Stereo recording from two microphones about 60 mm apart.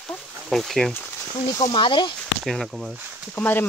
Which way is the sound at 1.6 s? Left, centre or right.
Left.